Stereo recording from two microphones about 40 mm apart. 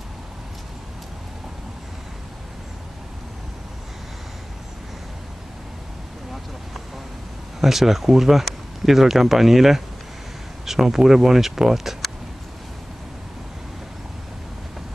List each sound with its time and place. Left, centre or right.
7.6 s speech: centre